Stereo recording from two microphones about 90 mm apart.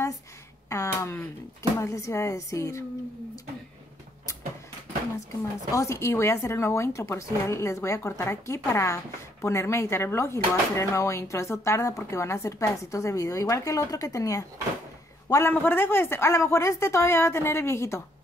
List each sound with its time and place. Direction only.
0.7 s speech: 30° left (ahead or behind)
5.7 s a man's voice: 35° left (ahead or behind)
15.5 s speech: 25° left (ahead or behind)